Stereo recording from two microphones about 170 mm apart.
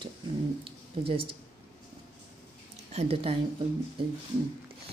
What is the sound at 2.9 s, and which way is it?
Speech, 35° right (ahead or behind).